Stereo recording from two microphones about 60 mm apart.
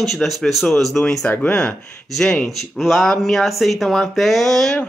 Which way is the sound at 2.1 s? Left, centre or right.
Centre.